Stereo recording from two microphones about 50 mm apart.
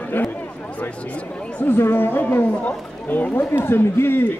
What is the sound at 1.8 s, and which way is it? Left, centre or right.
Speech, left.